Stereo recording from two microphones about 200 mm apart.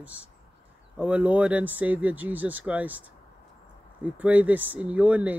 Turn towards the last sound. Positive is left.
turn(degrees=-5)  # may be behind; listen again after turning